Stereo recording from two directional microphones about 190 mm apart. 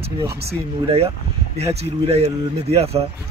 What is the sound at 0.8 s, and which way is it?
Speech, 30° right (ahead or behind).